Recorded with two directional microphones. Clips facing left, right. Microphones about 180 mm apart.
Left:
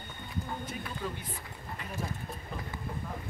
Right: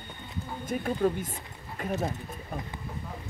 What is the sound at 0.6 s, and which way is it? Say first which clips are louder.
Speech: right 11 dB; 45° right (ahead or behind).